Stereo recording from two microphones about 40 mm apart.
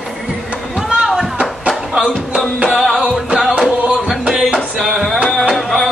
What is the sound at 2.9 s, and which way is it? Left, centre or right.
Music, right.